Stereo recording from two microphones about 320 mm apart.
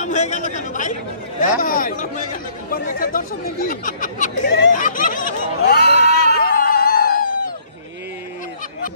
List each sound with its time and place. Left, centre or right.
0.0 s speech: left